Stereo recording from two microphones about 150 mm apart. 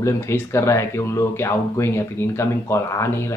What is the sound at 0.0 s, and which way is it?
Speech, 15° left (ahead or behind).